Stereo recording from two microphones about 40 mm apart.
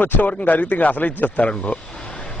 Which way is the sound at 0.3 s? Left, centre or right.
Left.